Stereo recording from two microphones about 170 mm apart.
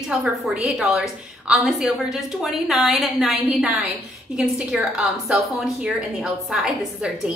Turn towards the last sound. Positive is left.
turn(degrees=-5)  # may be behind; listen again after turning